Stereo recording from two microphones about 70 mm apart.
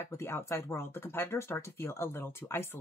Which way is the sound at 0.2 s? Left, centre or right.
Left.